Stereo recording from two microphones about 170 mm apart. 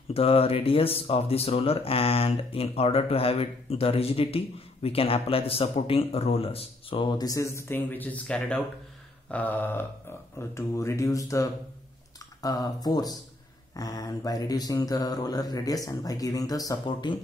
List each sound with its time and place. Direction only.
0.1 s speech: 35° left (ahead or behind); by 11.4 s 20° left (ahead or behind)
12.4 s mantra: 20° left (ahead or behind)